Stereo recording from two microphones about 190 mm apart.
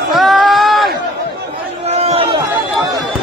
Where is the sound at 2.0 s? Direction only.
30° right (ahead or behind).